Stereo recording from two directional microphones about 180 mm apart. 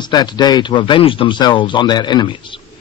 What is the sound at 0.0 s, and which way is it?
A man's voice, 25° left (ahead or behind).